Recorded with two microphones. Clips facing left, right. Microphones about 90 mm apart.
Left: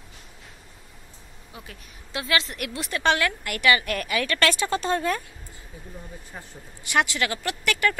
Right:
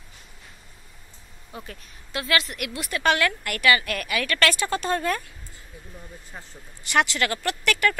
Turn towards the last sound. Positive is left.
turn(degrees=20)  # may be behind; listen again after turning